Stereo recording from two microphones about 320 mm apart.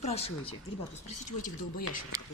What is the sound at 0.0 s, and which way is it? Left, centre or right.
Speech, centre.